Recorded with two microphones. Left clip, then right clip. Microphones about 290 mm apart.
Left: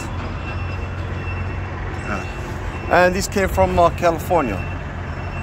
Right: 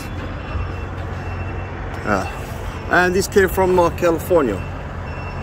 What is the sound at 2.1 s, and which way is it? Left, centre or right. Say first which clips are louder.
Speech: right 8 dB; centre.